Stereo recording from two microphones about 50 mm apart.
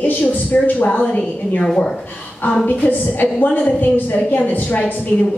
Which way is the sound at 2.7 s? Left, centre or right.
Left.